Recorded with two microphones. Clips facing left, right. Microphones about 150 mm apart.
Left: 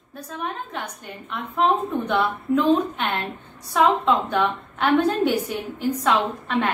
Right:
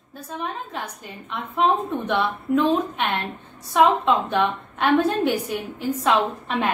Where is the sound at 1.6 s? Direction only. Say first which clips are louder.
Even; centre (ahead or behind).